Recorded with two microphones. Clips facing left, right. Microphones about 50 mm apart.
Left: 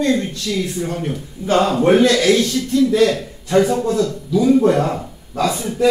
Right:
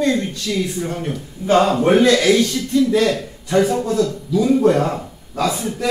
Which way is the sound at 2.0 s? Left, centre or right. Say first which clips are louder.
Even; right.